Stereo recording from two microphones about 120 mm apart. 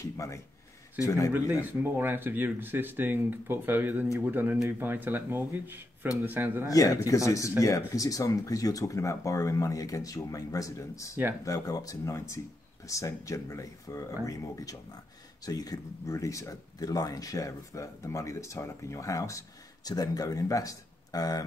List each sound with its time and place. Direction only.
0.0 s speech: 25° left (ahead or behind)
1.5 s speech: 15° right (ahead or behind)
6.7 s speech: 30° left (ahead or behind)